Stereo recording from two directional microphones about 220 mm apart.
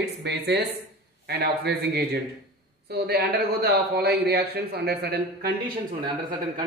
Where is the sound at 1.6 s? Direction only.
45° right (ahead or behind).